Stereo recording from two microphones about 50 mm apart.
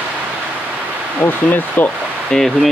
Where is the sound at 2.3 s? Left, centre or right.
Centre.